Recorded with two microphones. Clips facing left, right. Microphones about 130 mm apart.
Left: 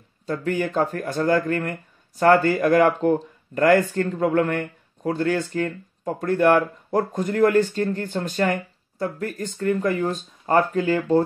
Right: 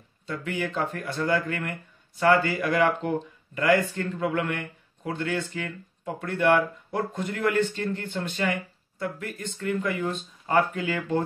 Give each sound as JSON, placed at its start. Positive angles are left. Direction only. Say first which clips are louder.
{"t": 0.3, "sound": "speech", "louder": "left 6 dB", "side_deg": 40}